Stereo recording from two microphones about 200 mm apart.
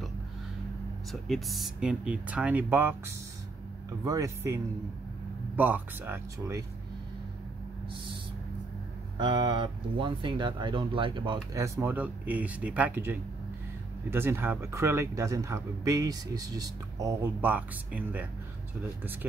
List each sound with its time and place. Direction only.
1.1 s speech: centre (ahead or behind)
4.0 s speech: 15° right (ahead or behind)
5.6 s speech: 10° right (ahead or behind)
9.2 s speech: 25° right (ahead or behind); by 18.2 s 10° right (ahead or behind)